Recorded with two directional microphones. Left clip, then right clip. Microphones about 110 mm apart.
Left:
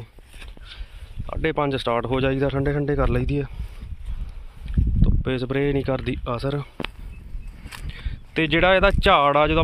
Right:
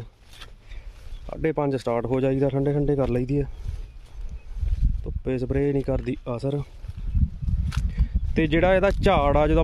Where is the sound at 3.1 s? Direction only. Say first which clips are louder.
Even; 45° right (ahead or behind).